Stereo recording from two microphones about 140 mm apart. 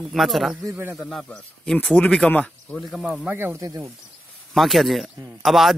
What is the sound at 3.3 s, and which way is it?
Speech, 15° right (ahead or behind).